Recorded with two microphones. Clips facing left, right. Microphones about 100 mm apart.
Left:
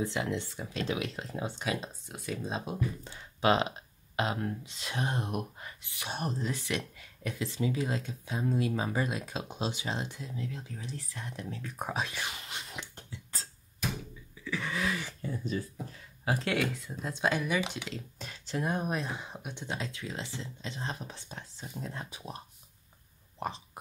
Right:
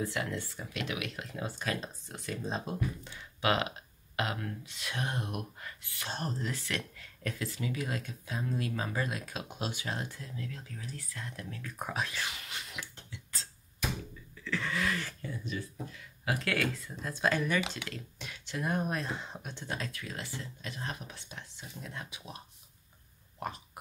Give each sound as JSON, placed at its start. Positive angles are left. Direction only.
{"t": 0.0, "sound": "speech", "side_deg": 20}
{"t": 0.7, "sound": "speech", "side_deg": 30}
{"t": 3.0, "sound": "speech", "side_deg": 30}
{"t": 12.9, "sound": "a sound", "side_deg": 40}
{"t": 14.3, "sound": "a sound", "side_deg": 15}
{"t": 15.4, "sound": "speech", "side_deg": 35}
{"t": 18.2, "sound": "speech", "side_deg": 35}
{"t": 18.6, "sound": "speech", "side_deg": 15}
{"t": 23.4, "sound": "speech", "side_deg": 25}